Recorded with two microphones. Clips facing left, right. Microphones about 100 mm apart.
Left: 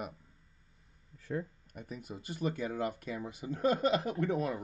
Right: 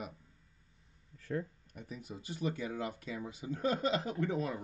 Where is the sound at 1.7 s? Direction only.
50° left (ahead or behind).